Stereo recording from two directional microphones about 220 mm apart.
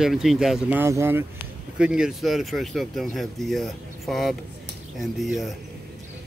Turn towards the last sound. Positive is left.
turn(degrees=0)  # may be behind; listen again after turning